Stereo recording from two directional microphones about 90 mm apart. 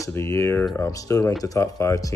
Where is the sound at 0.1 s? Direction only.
35° left (ahead or behind).